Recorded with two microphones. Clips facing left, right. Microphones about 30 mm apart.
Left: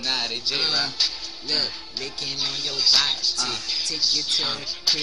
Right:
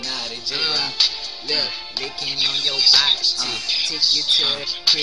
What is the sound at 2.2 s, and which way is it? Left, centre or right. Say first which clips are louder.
Music: right 7 dB; right.